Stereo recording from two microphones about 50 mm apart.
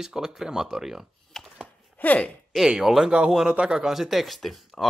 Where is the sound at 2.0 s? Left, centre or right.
Left.